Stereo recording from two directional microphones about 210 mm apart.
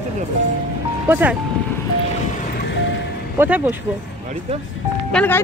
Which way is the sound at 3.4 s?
10° right (ahead or behind).